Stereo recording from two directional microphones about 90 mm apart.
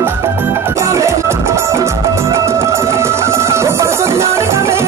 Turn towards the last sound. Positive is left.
turn(degrees=-30)  # may be behind; listen again after turning